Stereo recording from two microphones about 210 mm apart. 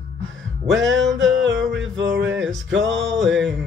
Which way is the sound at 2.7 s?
60° right (ahead or behind).